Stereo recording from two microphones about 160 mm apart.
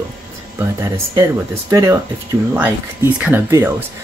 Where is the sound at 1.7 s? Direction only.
20° right (ahead or behind).